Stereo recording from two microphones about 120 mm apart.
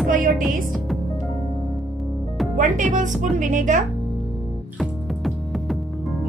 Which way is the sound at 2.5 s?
90° right.